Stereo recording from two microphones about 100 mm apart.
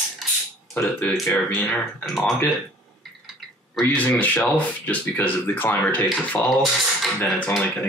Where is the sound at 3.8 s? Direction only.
20° left (ahead or behind).